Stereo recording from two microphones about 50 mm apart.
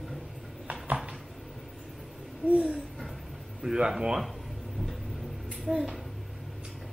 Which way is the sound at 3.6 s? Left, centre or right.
Centre.